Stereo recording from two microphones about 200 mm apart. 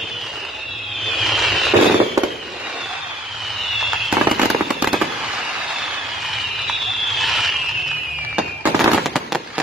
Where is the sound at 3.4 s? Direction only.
Centre (ahead or behind).